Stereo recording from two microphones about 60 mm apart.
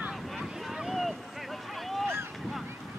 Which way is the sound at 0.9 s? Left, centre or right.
Centre.